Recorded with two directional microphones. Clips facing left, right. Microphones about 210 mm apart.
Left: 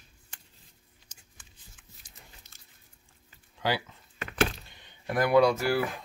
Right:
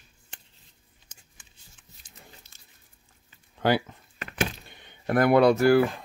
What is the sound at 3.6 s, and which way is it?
Speech, 55° right (ahead or behind).